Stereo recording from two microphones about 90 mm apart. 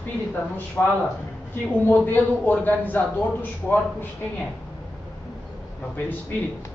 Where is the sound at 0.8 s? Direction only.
15° left (ahead or behind).